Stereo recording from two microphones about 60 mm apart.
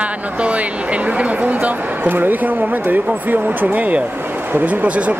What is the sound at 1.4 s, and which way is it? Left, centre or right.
Speech, right.